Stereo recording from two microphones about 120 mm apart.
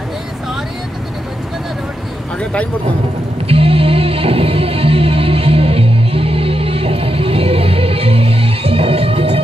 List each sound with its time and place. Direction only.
3.4 s music: 50° right (ahead or behind)